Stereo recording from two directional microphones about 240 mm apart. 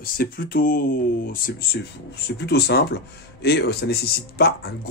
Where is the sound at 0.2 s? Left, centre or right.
Left.